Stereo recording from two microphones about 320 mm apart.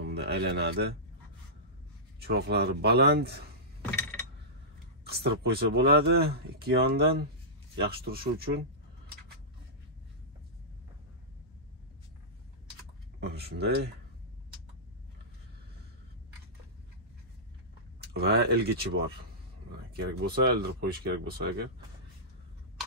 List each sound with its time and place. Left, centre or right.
0.0 s speech: right
2.1 s speech: right
5.0 s speech: right
13.2 s speech: right
18.0 s speech: right
19.9 s speech: right